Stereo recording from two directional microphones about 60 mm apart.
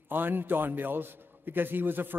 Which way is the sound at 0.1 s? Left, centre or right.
Right.